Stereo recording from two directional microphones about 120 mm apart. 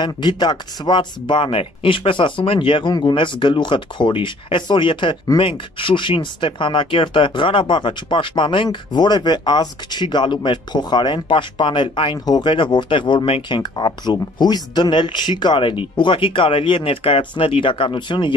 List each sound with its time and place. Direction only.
0.0 s speech: 40° left (ahead or behind)